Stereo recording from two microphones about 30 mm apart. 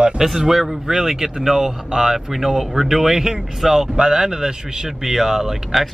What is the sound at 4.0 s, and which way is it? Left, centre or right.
Speech, centre.